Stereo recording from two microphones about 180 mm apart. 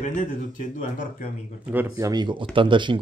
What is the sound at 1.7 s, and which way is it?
Speech, 15° right (ahead or behind).